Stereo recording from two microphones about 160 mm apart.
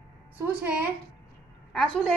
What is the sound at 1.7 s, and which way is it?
Speech, 5° left (ahead or behind).